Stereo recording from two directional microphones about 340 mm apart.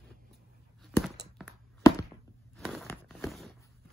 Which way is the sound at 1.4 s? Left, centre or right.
Centre.